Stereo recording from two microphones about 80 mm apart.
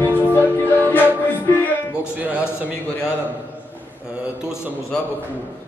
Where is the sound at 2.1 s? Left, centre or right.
Centre.